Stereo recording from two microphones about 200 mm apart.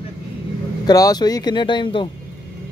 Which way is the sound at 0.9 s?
20° left (ahead or behind).